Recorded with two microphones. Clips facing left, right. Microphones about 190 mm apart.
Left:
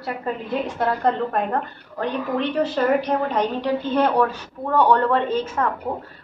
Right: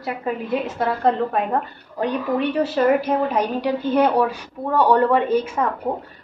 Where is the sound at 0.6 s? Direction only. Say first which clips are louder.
Even; 5° right (ahead or behind).